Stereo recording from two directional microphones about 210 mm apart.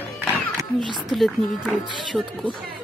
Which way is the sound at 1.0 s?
Centre (ahead or behind).